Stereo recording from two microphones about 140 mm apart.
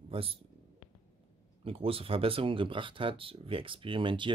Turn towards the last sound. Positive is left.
turn(degrees=-35)  # may be behind; listen again after turning